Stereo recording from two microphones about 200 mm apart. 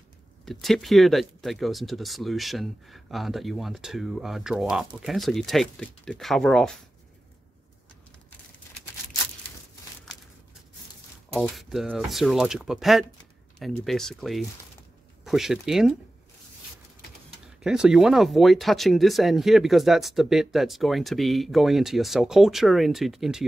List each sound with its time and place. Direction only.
0.5 s speech: centre (ahead or behind)
11.3 s speech: centre (ahead or behind)
17.6 s speech: 5° right (ahead or behind)